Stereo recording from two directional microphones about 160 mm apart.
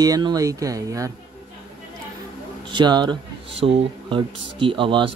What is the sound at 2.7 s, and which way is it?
Speech, 30° right (ahead or behind).